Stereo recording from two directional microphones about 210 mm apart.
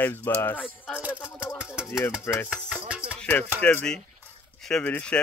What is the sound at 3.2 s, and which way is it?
Music, 5° left (ahead or behind).